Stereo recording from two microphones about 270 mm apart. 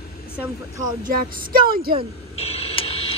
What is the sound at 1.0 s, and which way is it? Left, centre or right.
Speech, right.